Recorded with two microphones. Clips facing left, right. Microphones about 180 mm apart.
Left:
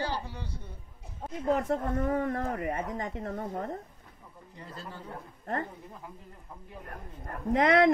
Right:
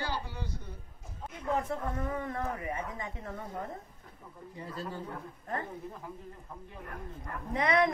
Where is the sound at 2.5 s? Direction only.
55° left (ahead or behind).